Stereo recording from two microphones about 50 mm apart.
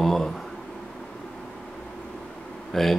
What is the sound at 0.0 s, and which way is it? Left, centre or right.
Speech, centre.